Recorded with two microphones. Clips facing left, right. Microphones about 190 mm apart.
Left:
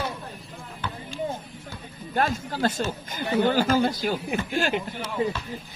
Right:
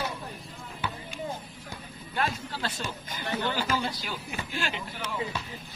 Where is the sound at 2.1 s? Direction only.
45° left (ahead or behind).